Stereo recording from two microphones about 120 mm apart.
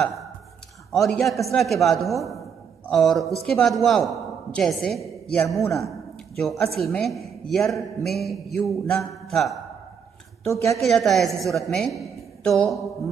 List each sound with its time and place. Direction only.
0.9 s a man's voice: centre (ahead or behind)
10.4 s a woman's voice: 25° left (ahead or behind)
10.7 s a man's voice: centre (ahead or behind)